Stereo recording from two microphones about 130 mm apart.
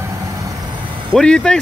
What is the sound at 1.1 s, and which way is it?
Speech, 5° left (ahead or behind).